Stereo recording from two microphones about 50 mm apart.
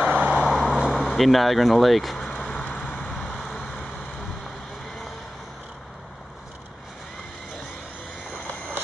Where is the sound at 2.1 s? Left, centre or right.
Centre.